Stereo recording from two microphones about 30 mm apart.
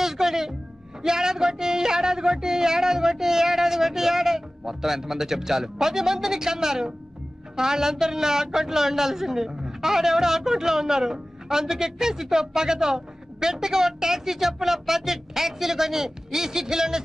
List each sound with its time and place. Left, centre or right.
0.0 s music: centre
1.0 s a man's voice: centre